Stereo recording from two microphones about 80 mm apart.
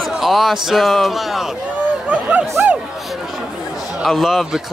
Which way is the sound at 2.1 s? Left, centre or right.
Centre.